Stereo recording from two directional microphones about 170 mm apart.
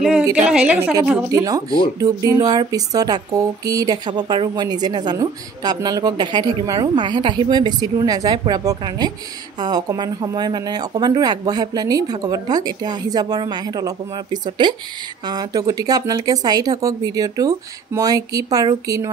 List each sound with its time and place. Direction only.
0.4 s a woman's voice: 5° right (ahead or behind)
1.3 s speech: 20° right (ahead or behind)